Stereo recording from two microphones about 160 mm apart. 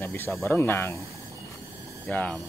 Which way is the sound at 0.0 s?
15° left (ahead or behind).